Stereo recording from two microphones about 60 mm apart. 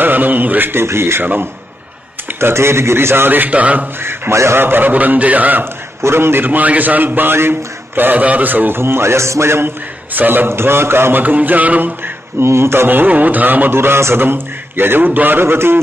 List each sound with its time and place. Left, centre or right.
0.0 s a man's voice: right
1.2 s a man's voice: right
2.4 s a man's voice: right
4.0 s a man's voice: right
6.0 s a man's voice: right
10.1 s a man's voice: right
12.4 s a man's voice: right